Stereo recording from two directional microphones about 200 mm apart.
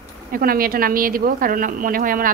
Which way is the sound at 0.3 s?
45° right (ahead or behind).